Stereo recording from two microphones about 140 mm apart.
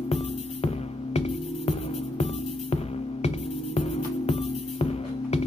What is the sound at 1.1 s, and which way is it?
Music, 50° left (ahead or behind).